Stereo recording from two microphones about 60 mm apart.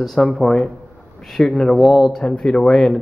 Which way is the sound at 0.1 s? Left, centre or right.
Centre.